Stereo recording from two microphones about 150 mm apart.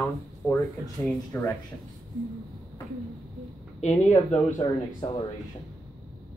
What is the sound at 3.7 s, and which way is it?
Speech, 50° left (ahead or behind).